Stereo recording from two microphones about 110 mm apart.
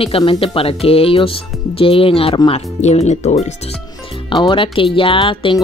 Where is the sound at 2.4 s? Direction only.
70° left (ahead or behind); by 3.6 s 90° left.